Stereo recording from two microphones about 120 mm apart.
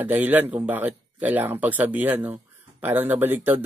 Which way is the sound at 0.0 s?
15° right (ahead or behind).